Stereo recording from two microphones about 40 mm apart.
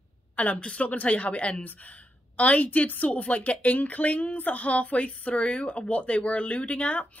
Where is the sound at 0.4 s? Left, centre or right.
Left.